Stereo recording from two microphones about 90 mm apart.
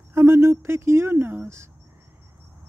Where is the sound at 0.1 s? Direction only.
30° right (ahead or behind).